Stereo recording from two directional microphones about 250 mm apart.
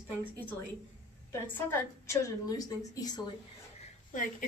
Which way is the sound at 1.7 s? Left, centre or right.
Centre.